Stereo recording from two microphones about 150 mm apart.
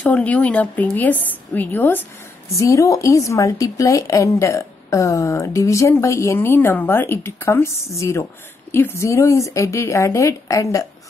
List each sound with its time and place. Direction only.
0.0 s a woman's voice: 10° left (ahead or behind)